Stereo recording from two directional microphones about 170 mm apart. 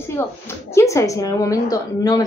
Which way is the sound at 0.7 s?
15° left (ahead or behind).